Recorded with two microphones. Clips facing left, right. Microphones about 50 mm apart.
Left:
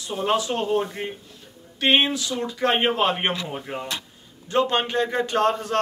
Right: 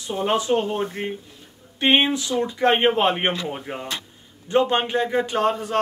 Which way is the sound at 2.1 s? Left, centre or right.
Right.